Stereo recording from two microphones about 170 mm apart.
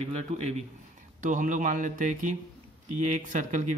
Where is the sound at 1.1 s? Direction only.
50° right (ahead or behind).